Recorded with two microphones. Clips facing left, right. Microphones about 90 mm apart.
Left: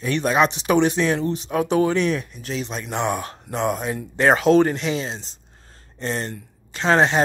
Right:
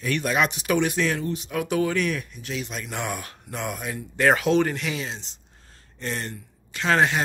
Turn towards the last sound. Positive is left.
turn(degrees=30)  # may be behind; listen again after turning